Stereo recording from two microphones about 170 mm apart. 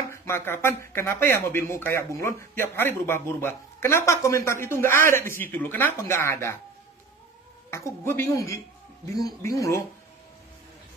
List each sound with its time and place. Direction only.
0.1 s speech: 15° left (ahead or behind)
7.7 s speech: 15° left (ahead or behind)